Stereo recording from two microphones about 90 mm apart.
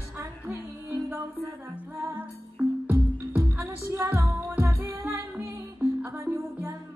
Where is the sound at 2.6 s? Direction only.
30° right (ahead or behind).